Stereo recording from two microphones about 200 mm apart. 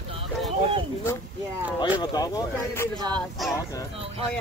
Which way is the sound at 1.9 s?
20° left (ahead or behind).